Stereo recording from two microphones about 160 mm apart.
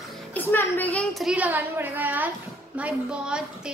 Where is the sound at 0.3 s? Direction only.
10° left (ahead or behind).